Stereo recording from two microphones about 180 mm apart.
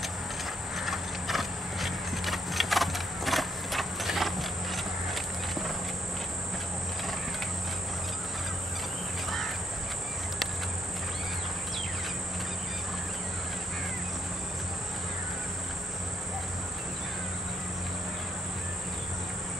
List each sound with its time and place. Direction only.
0.7 s clip-clop: centre (ahead or behind)